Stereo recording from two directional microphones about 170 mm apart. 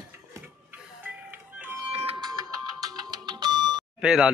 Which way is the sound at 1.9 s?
35° right (ahead or behind).